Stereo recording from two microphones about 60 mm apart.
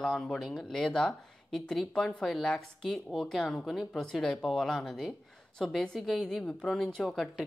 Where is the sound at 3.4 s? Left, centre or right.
Centre.